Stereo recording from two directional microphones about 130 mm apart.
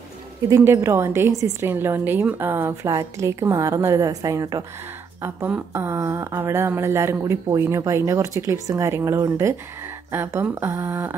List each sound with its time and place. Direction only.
0.5 s speech: 20° right (ahead or behind)
5.2 s speech: 15° right (ahead or behind)